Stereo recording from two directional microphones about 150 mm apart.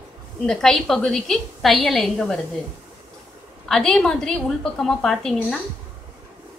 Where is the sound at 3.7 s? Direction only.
5° left (ahead or behind).